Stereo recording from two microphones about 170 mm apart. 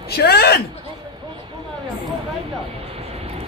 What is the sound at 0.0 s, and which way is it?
Speech, 70° left (ahead or behind).